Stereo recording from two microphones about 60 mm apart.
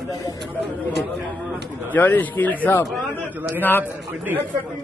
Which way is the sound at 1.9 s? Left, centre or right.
Left.